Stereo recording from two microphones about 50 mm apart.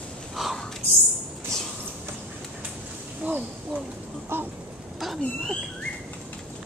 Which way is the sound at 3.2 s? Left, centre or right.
Right.